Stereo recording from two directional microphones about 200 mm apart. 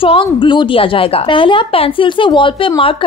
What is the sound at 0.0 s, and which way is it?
A woman's voice, 25° left (ahead or behind).